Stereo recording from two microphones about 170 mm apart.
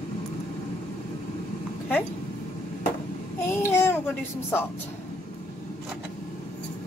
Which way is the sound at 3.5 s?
15° left (ahead or behind).